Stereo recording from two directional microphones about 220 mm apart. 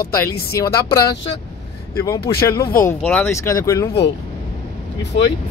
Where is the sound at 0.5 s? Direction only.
15° left (ahead or behind).